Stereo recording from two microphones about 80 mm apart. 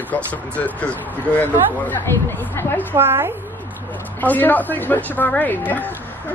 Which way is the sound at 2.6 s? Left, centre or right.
Left.